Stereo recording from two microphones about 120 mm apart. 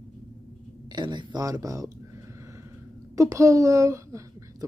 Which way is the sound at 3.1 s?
25° right (ahead or behind).